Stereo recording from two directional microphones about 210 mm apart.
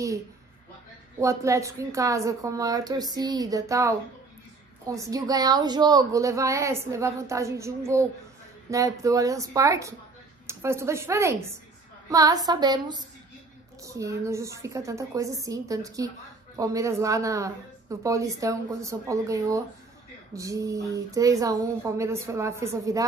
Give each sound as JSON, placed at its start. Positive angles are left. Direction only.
{"t": 1.2, "sound": "a woman's voice", "side_deg": -15}
{"t": 12.1, "sound": "music", "side_deg": -15}
{"t": 13.8, "sound": "a woman's voice", "side_deg": -15}